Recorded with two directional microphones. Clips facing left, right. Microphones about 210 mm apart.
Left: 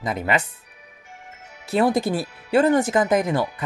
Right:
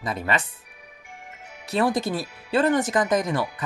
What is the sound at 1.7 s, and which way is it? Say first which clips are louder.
Speech: left 3 dB; 25° left (ahead or behind).